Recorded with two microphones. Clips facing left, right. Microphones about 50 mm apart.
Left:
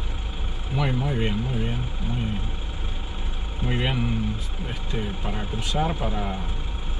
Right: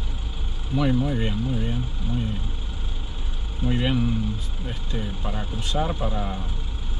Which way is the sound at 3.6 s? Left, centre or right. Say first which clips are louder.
Right 3 dB; left.